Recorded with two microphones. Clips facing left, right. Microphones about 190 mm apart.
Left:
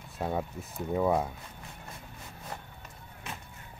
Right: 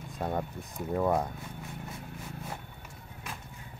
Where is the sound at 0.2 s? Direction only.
5° left (ahead or behind).